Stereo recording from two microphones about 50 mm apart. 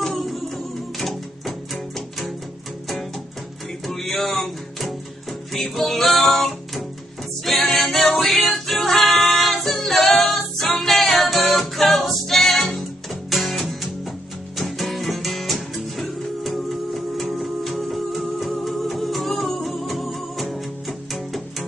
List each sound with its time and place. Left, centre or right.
0.0 s music: centre
3.8 s music: centre